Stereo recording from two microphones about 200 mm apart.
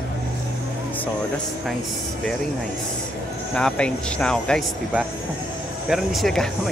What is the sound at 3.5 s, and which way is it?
Speech, 5° left (ahead or behind).